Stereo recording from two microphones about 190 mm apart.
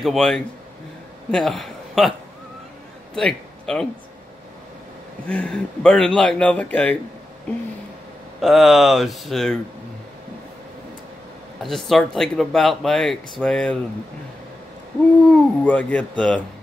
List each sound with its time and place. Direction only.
0.0 s a man's voice: centre (ahead or behind)
3.2 s a man's voice: 5° left (ahead or behind)
5.3 s speech: 5° left (ahead or behind)
8.4 s speech: centre (ahead or behind)
11.6 s speech: centre (ahead or behind)
15.2 s speech: 10° left (ahead or behind)